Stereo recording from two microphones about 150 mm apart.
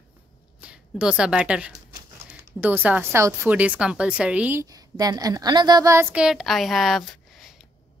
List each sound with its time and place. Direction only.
0.6 s speech: 5° right (ahead or behind)
3.5 s speech: 10° right (ahead or behind)
4.6 s a woman's voice: 25° right (ahead or behind)
6.1 s a woman's voice: 5° right (ahead or behind)